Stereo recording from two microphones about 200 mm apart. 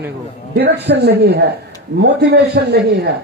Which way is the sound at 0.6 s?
55° right (ahead or behind).